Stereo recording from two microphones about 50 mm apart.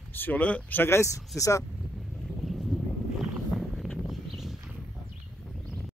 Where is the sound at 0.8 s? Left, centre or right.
Left.